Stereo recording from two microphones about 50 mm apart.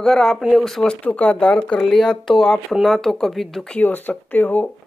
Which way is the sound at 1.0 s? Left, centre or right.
Left.